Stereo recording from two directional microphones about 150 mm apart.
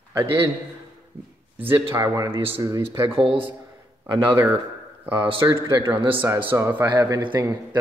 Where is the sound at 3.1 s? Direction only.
35° right (ahead or behind).